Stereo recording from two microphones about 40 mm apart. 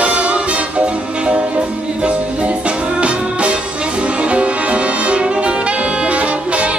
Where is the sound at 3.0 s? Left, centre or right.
Right.